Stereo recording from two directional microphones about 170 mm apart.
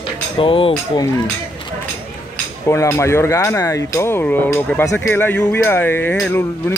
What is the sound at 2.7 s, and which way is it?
Speech, 15° left (ahead or behind).